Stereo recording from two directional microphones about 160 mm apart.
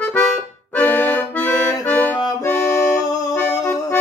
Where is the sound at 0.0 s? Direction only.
5° left (ahead or behind).